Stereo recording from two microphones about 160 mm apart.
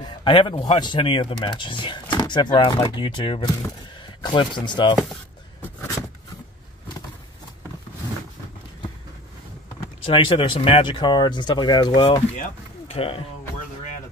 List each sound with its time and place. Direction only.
0.0 s speech: 30° left (ahead or behind)
10.0 s speech: 35° left (ahead or behind)